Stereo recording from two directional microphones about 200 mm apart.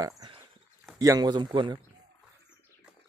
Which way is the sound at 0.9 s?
20° right (ahead or behind).